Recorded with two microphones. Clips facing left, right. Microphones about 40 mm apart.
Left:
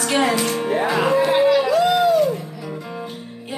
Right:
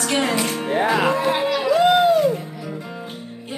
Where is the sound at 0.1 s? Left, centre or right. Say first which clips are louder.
Left 3 dB; centre.